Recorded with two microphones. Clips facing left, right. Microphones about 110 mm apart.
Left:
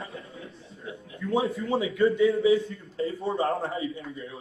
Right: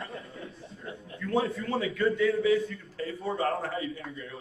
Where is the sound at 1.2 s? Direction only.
20° left (ahead or behind).